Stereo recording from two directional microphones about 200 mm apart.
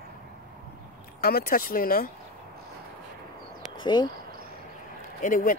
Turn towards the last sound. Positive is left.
turn(degrees=40)  # may be behind; listen again after turning